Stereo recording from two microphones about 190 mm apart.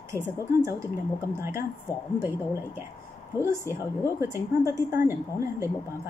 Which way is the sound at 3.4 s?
15° right (ahead or behind).